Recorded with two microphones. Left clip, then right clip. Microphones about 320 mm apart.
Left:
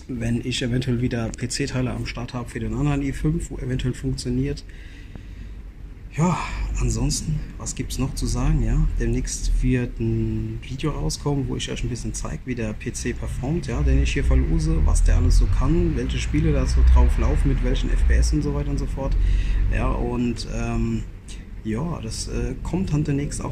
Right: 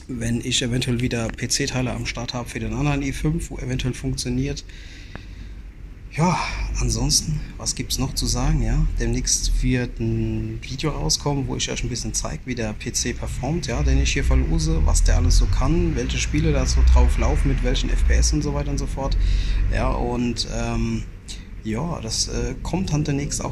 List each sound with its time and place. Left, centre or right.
0.2 s speech: centre
6.1 s speech: centre